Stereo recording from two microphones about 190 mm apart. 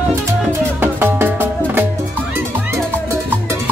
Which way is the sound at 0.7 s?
10° right (ahead or behind).